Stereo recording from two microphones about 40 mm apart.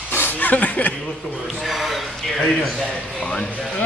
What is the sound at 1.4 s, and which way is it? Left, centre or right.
Speech, centre.